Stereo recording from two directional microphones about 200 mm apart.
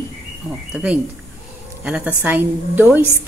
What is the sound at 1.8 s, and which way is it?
A woman's voice, 10° right (ahead or behind).